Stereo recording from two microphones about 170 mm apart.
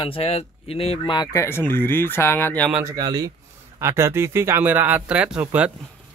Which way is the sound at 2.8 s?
25° right (ahead or behind).